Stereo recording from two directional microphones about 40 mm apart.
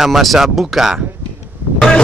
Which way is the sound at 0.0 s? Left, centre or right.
Centre.